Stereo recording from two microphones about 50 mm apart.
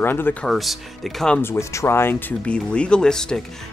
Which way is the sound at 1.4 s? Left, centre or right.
Left.